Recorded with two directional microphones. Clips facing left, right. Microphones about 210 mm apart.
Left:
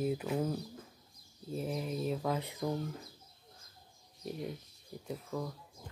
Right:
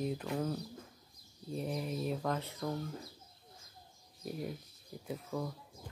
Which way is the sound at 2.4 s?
15° left (ahead or behind).